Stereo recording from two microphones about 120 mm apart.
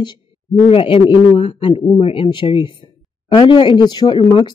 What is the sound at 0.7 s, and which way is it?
A man's voice, 50° left (ahead or behind).